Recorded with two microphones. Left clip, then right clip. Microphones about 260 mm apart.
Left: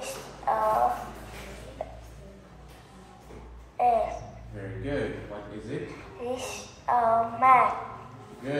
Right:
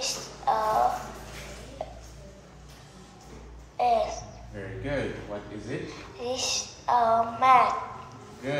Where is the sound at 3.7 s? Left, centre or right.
Centre.